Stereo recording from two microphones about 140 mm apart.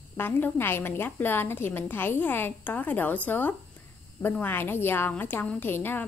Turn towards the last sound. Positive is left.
turn(degrees=15)  # may be behind; listen again after turning